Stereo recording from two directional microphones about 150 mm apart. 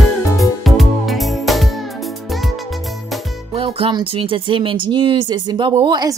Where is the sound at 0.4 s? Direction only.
Centre (ahead or behind).